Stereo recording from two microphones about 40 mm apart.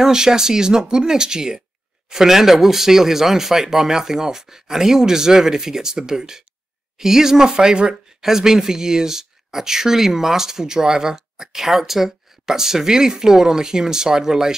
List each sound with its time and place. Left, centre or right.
0.0 s speech: centre